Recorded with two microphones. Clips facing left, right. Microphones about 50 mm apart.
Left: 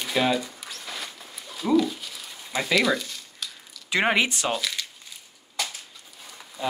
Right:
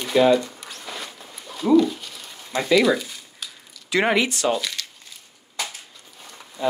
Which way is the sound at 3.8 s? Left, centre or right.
Left.